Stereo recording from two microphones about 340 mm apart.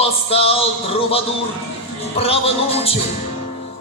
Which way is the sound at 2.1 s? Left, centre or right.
Centre.